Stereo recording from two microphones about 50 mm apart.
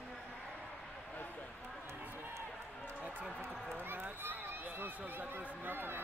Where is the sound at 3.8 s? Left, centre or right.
Right.